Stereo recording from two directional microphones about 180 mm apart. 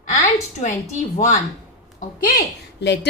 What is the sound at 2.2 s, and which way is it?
Speech, 65° left (ahead or behind).